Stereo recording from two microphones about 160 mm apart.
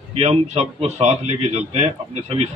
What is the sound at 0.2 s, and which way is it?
A man's voice, 40° right (ahead or behind).